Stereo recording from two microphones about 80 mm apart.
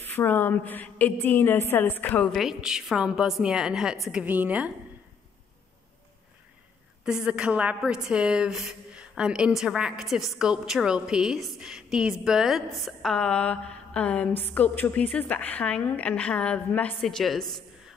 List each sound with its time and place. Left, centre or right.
0.0 s a woman's voice: left
2.3 s a woman's voice: centre
7.1 s a woman's voice: centre
17.0 s a woman's voice: centre